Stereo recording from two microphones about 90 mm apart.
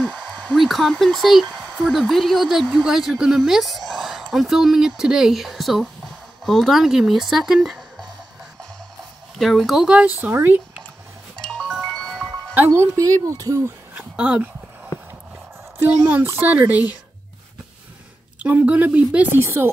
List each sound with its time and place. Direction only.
0.0 s a sound: 15° left (ahead or behind)
0.6 s speech: centre (ahead or behind)
9.4 s speech: centre (ahead or behind)
10.1 s speech: 25° right (ahead or behind)
11.4 s music: 5° left (ahead or behind)
12.5 s speech: 25° right (ahead or behind)
13.9 s speech: 15° right (ahead or behind)
15.8 s speech: 25° right (ahead or behind)
18.4 s speech: 15° right (ahead or behind)
19.3 s speech: 30° right (ahead or behind)